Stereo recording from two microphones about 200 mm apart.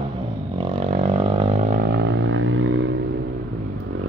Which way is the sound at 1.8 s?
60° right (ahead or behind).